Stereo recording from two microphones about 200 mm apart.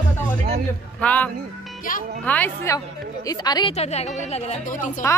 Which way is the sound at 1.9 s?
45° left (ahead or behind).